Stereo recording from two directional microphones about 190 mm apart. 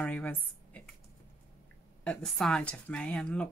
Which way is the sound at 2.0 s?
5° left (ahead or behind).